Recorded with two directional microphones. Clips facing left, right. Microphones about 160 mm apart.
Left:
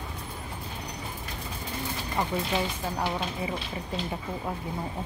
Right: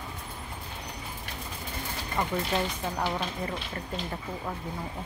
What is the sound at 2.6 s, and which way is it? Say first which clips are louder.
Speech: even; 5° left (ahead or behind).